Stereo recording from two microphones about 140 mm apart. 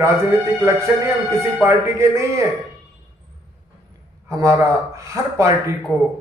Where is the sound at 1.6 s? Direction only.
20° right (ahead or behind).